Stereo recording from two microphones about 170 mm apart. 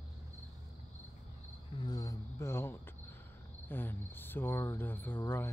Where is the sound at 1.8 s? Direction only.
20° left (ahead or behind).